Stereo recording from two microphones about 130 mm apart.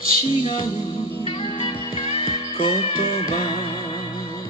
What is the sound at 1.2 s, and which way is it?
Music, 45° left (ahead or behind).